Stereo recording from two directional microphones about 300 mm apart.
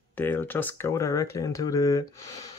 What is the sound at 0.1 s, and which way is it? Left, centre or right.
Speech, centre.